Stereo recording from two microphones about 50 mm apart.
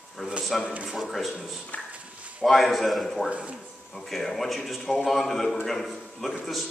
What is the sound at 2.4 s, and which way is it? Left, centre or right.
Speech, centre.